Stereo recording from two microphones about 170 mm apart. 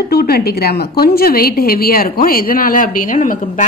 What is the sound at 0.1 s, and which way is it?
A woman's voice, 65° left (ahead or behind).